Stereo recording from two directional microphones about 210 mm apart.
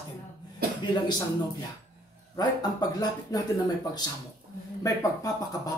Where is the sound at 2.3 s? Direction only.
20° left (ahead or behind).